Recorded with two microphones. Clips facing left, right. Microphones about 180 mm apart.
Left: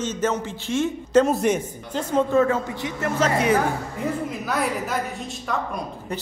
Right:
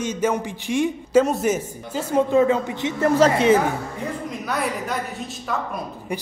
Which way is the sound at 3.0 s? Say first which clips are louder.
Right 5 dB; 35° right (ahead or behind).